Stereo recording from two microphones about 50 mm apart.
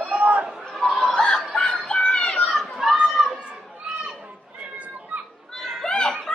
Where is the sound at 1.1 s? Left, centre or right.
Centre.